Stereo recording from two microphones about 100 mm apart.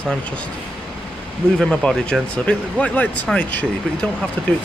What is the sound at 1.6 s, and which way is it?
Speech, 10° left (ahead or behind).